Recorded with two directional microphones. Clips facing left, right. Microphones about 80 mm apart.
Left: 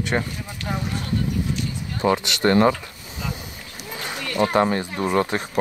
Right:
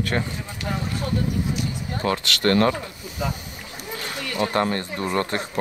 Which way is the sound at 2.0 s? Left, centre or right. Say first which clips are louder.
Left 3 dB; centre.